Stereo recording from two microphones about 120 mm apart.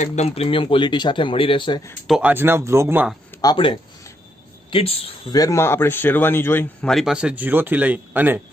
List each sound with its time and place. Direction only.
0.0 s speech: 70° left (ahead or behind); by 1.8 s 45° left (ahead or behind)
2.0 s speech: 5° right (ahead or behind)
2.3 s speech: 20° right (ahead or behind)
3.4 s speech: 30° left (ahead or behind)
4.6 s speech: 50° left (ahead or behind)
5.3 s speech: 30° left (ahead or behind)
6.9 s speech: centre (ahead or behind)